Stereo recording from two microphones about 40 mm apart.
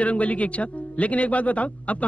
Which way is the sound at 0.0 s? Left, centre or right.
Left.